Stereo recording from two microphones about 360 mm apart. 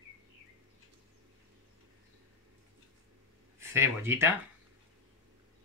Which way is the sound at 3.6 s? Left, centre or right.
Centre.